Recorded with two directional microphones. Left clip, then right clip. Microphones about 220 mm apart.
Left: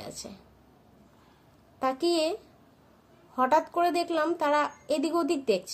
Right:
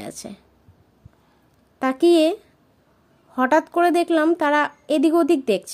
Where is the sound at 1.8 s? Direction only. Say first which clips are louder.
Right 10 dB; 40° right (ahead or behind).